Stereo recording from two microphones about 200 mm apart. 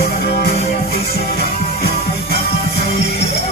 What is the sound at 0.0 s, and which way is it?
Music, 50° left (ahead or behind).